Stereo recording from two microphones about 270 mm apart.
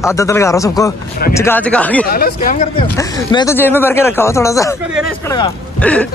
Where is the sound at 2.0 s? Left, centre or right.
Left.